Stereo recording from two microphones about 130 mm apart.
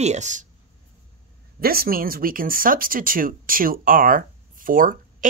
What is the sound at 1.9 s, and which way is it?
Speech, 90° right.